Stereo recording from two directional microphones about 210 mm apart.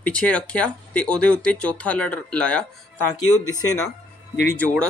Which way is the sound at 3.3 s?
90° left.